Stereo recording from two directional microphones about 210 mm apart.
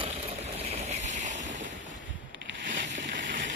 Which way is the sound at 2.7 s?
40° right (ahead or behind).